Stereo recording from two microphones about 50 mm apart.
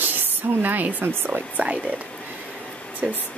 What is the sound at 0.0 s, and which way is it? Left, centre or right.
Speech, right.